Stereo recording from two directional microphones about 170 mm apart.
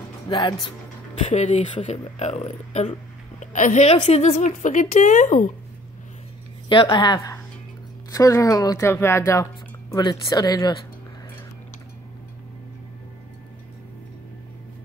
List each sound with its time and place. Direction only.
0.3 s speech: 25° left (ahead or behind)
1.2 s a woman's voice: 45° left (ahead or behind)
6.7 s speech: 30° left (ahead or behind)